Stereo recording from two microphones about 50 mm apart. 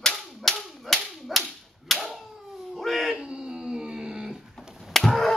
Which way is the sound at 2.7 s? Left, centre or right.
Centre.